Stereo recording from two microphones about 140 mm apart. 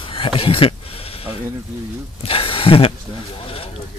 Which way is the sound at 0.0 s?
40° left (ahead or behind).